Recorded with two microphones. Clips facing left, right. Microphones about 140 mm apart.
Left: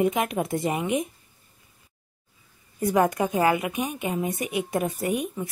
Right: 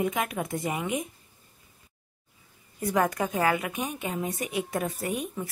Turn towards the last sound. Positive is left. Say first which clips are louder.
# left 4 dB
turn(degrees=15)  # may be behind; listen again after turning